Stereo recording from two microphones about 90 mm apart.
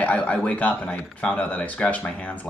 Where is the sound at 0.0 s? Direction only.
15° left (ahead or behind).